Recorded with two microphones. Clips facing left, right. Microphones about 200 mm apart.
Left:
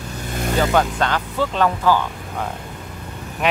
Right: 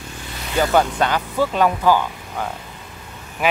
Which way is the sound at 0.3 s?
50° left (ahead or behind).